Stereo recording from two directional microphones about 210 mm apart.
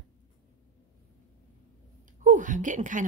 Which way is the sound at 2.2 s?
35° right (ahead or behind).